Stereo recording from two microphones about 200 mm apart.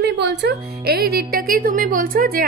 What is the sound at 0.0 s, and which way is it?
A woman's voice, 55° right (ahead or behind).